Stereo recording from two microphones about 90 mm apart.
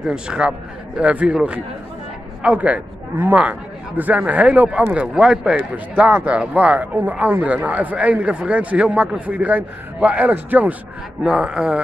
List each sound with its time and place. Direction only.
0.0 s a man's voice: 10° right (ahead or behind)
11.2 s a man's voice: 5° right (ahead or behind)